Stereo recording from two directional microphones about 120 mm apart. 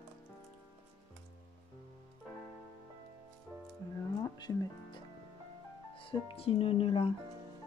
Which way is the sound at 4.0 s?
35° left (ahead or behind).